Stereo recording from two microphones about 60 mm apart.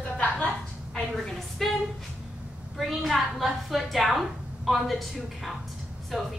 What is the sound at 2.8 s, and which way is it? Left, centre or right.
A woman's voice, centre.